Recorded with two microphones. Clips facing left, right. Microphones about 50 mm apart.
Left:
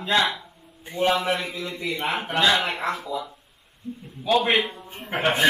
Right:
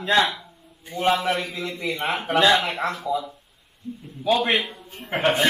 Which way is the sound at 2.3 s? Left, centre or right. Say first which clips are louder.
Right 4 dB; centre.